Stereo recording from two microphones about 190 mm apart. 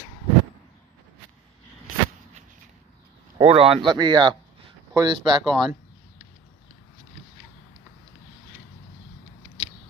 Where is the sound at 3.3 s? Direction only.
30° right (ahead or behind).